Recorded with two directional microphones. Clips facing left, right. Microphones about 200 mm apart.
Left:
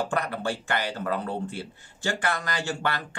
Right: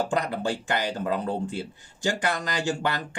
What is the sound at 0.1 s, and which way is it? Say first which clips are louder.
Speech: right 2 dB; 15° right (ahead or behind).